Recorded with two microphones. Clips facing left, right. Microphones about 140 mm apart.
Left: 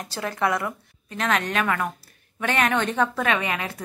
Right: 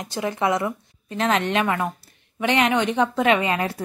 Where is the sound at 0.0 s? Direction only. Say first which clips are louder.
Right 2 dB; 20° right (ahead or behind).